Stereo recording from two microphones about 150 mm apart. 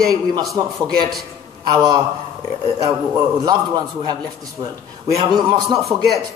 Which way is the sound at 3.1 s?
25° right (ahead or behind).